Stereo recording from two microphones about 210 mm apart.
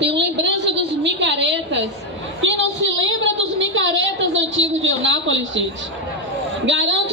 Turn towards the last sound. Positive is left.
turn(degrees=-60)  # may be behind; listen again after turning